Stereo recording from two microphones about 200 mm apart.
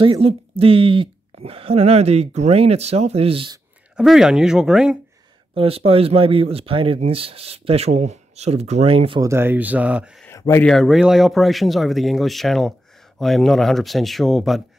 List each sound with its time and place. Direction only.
0.0 s speech: 25° right (ahead or behind)
3.9 s speech: centre (ahead or behind)
5.5 s speech: 30° right (ahead or behind)
9.3 s speech: 10° right (ahead or behind)
10.2 s a sound: 15° left (ahead or behind)
10.7 s speech: centre (ahead or behind)